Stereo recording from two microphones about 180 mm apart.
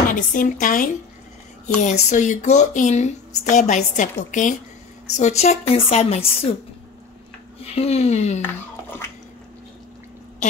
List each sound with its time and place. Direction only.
0.1 s a woman's voice: 45° left (ahead or behind)
7.6 s a woman's voice: 35° left (ahead or behind)